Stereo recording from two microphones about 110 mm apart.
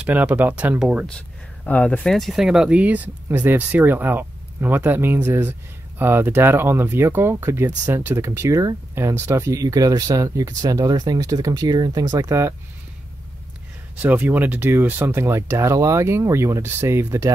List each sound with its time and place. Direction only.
0.0 s speech: 15° right (ahead or behind)
1.7 s speech: 15° left (ahead or behind); by 12.5 s 25° right (ahead or behind)
13.9 s speech: 15° right (ahead or behind)